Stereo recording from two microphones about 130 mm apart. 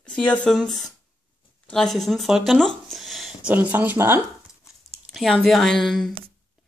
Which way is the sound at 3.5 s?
15° right (ahead or behind).